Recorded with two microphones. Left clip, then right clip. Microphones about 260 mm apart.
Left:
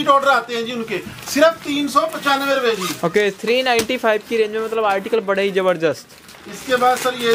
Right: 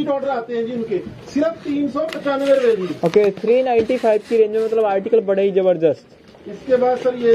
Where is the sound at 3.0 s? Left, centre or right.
Left.